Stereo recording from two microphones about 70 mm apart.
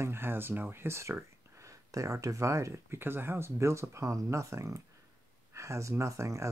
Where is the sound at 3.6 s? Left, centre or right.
Right.